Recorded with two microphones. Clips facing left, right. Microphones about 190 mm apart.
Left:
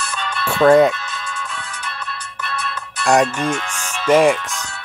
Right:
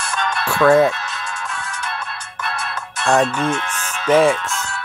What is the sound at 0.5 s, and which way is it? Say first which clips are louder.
Music: left 2 dB; 20° left (ahead or behind).